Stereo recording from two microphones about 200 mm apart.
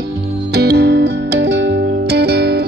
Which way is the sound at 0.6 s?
55° right (ahead or behind).